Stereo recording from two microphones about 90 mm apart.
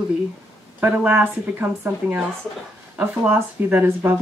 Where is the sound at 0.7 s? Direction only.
20° right (ahead or behind).